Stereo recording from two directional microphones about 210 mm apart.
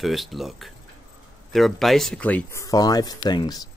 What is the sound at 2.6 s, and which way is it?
Speech, 20° left (ahead or behind).